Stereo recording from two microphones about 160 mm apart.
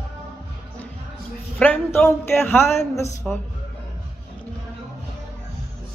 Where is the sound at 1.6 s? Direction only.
10° left (ahead or behind).